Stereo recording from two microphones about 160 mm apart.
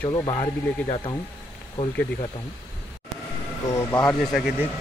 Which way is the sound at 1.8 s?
35° left (ahead or behind).